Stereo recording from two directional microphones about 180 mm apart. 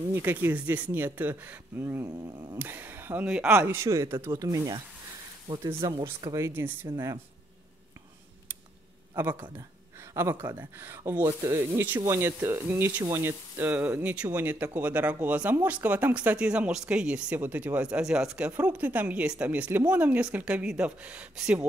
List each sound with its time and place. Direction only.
0.1 s speech: 15° right (ahead or behind)
10.1 s speech: 15° right (ahead or behind)